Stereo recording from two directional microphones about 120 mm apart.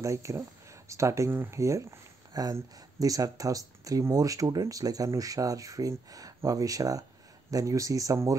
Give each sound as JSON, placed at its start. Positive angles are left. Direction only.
{"t": 0.0, "sound": "speech", "side_deg": -25}